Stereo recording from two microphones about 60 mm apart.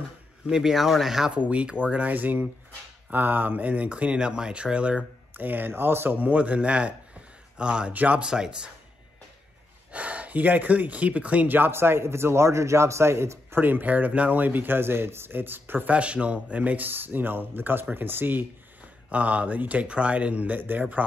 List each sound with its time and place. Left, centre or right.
0.5 s speech: centre
1.3 s speech: right
5.4 s speech: right; by 7.9 s centre
7.9 s speech: right
8.2 s speech: centre
9.9 s speech: right
13.6 s speech: right
15.9 s speech: centre